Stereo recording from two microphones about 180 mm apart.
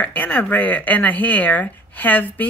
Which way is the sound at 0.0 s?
10° left (ahead or behind).